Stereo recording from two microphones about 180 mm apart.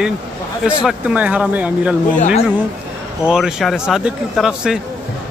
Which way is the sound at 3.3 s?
Centre (ahead or behind).